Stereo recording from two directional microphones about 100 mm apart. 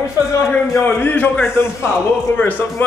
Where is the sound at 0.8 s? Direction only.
20° left (ahead or behind).